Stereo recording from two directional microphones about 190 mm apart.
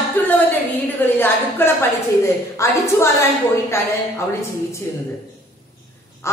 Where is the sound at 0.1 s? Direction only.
10° left (ahead or behind).